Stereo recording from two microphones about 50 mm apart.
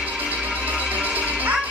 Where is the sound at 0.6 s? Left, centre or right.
Right.